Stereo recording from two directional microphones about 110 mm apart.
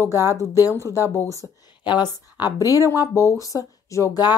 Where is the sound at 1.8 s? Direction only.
40° left (ahead or behind).